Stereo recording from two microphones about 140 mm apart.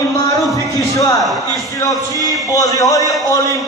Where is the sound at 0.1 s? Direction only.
20° left (ahead or behind).